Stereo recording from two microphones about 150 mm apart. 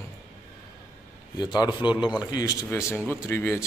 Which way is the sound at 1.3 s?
25° left (ahead or behind).